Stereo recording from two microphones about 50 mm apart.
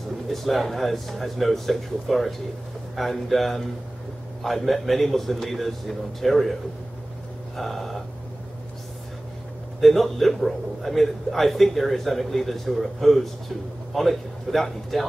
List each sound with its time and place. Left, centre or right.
0.3 s a man's voice: centre
7.5 s a man's voice: centre
9.8 s a man's voice: centre